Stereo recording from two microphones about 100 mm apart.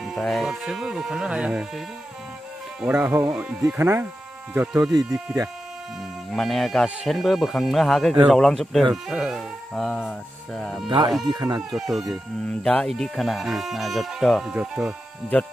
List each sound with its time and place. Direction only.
0.0 s speech: centre (ahead or behind)
3.1 s speech: 25° right (ahead or behind)
6.3 s speech: centre (ahead or behind)
11.3 s speech: 35° right (ahead or behind)
11.7 s speech: 5° right (ahead or behind)
12.4 s speech: 10° left (ahead or behind); by 15.0 s 10° right (ahead or behind)